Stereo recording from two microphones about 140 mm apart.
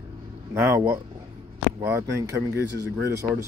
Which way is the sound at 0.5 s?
20° right (ahead or behind).